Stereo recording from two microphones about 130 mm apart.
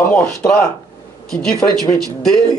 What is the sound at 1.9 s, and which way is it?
Speech, 5° left (ahead or behind).